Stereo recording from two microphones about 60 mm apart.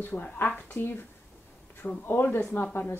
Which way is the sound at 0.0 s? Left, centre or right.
Left.